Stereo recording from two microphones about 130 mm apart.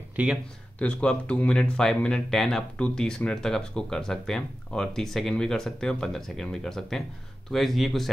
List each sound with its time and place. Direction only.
0.1 s speech: 10° right (ahead or behind)
0.7 s speech: 10° left (ahead or behind)